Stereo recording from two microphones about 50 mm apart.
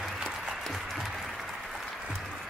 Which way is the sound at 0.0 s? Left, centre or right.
Centre.